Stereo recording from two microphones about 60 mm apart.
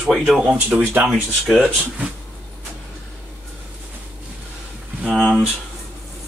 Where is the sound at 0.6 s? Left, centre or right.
Right.